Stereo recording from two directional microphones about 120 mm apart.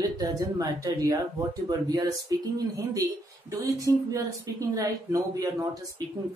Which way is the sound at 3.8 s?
30° right (ahead or behind).